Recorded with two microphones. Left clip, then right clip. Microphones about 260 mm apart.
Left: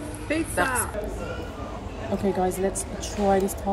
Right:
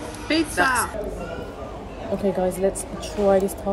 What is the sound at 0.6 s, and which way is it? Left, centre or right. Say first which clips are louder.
Speech: right 5 dB; left.